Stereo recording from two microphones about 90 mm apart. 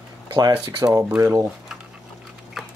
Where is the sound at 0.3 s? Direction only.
65° right (ahead or behind).